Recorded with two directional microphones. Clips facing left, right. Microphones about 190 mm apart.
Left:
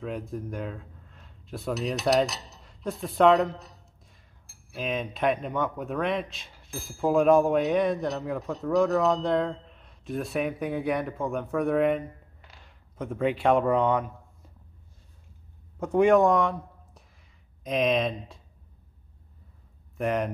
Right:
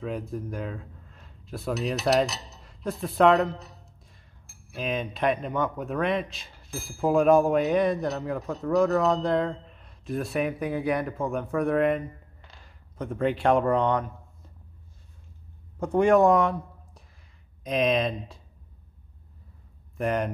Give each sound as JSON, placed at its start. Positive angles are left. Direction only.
{"t": 0.0, "sound": "speech", "side_deg": 0}
{"t": 15.8, "sound": "speech", "side_deg": 0}
{"t": 20.0, "sound": "speech", "side_deg": 0}